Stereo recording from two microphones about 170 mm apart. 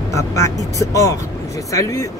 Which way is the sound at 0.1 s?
20° left (ahead or behind).